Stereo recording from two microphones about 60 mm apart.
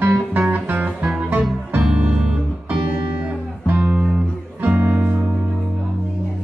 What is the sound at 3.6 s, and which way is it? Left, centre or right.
Music, right.